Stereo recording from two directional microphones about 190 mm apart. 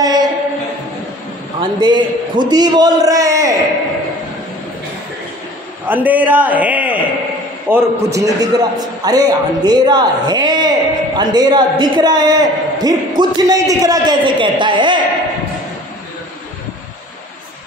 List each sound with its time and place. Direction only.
0.0 s a sound: 20° right (ahead or behind)
1.6 s a man's voice: 25° right (ahead or behind)
5.9 s a man's voice: 10° right (ahead or behind); by 15.0 s 25° right (ahead or behind)